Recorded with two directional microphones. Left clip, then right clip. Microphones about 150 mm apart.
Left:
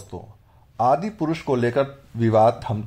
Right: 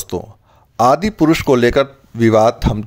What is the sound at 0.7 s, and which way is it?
Speech, 45° right (ahead or behind).